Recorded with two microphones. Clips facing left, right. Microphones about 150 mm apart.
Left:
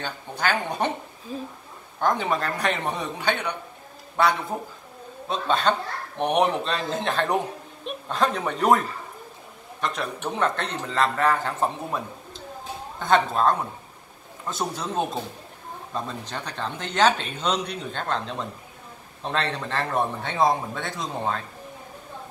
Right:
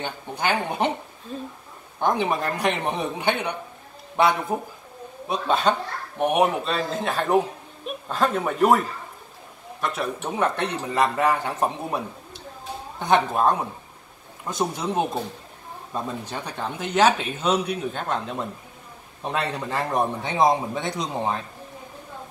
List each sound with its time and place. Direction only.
0.0 s speech: 15° right (ahead or behind)
1.3 s speech: 5° left (ahead or behind)
2.0 s speech: 15° right (ahead or behind)
13.0 s speech: 15° right (ahead or behind)